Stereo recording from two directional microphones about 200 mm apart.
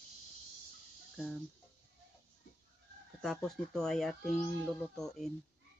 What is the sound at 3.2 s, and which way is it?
Speech, centre (ahead or behind).